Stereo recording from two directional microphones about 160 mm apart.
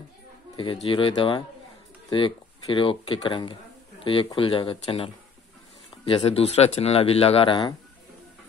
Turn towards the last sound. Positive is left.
turn(degrees=30)  # may be behind; listen again after turning